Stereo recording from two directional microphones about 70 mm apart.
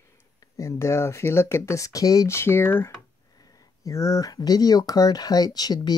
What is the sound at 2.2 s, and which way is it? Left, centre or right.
Speech, left.